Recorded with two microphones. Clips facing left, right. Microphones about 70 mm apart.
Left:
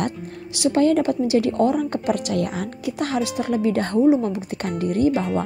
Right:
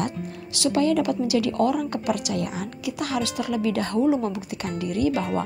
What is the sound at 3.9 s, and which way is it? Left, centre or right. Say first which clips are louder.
Speech: left 5 dB; left.